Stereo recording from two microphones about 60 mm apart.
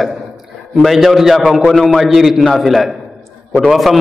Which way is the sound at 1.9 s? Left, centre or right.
Centre.